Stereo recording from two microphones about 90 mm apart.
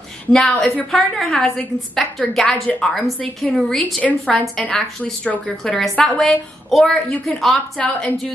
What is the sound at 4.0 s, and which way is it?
A woman's voice, 15° left (ahead or behind).